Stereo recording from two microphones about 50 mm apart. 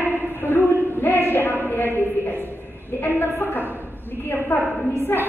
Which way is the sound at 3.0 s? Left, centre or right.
Left.